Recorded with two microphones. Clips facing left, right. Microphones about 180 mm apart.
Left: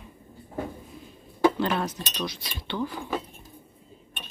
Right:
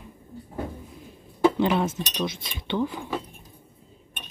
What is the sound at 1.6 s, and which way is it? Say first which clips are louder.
Speech: right 4 dB; 20° right (ahead or behind).